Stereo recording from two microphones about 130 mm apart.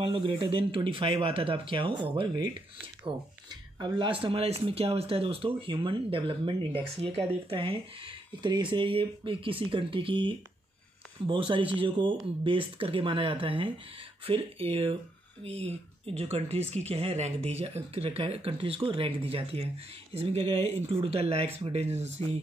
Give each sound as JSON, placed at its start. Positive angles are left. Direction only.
{"t": 0.0, "sound": "speech", "side_deg": -40}